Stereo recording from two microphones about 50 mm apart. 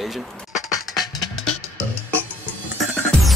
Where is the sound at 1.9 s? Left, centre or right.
Left.